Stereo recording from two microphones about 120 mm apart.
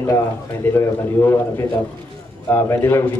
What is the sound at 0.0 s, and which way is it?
A man's voice, 20° left (ahead or behind).